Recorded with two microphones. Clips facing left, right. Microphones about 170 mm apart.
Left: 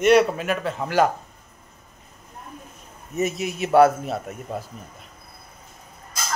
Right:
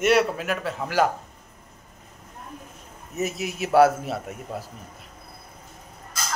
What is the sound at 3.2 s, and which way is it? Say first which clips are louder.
A man's voice: left 3 dB; centre (ahead or behind).